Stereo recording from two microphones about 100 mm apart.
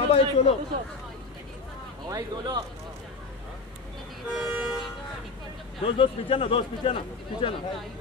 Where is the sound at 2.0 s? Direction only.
40° right (ahead or behind).